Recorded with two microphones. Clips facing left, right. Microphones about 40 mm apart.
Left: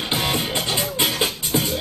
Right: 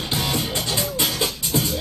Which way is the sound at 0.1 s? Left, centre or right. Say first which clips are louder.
Left 2 dB; left.